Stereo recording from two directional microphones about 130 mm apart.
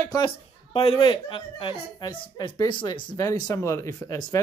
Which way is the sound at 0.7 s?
45° left (ahead or behind).